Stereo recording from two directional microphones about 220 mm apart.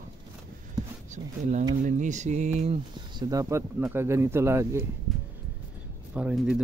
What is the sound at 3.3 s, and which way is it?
Speech, 15° right (ahead or behind).